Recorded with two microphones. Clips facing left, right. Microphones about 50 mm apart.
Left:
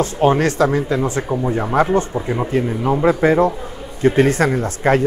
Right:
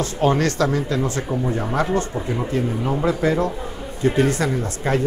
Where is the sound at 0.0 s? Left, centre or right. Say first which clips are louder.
Left 4 dB; left.